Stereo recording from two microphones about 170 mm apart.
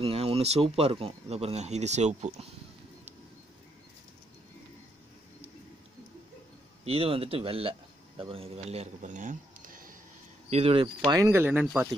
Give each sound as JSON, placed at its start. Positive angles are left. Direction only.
{"t": 0.0, "sound": "speech", "side_deg": -35}
{"t": 6.8, "sound": "speech", "side_deg": -35}
{"t": 10.5, "sound": "speech", "side_deg": -35}
{"t": 11.1, "sound": "speech", "side_deg": -20}